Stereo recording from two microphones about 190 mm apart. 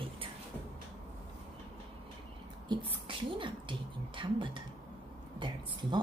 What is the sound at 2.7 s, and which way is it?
A woman's voice, 25° right (ahead or behind).